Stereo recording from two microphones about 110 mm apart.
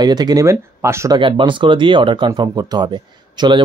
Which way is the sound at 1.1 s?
50° right (ahead or behind).